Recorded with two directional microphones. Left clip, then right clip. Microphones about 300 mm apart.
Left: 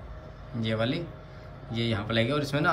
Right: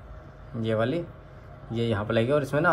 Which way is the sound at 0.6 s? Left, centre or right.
Centre.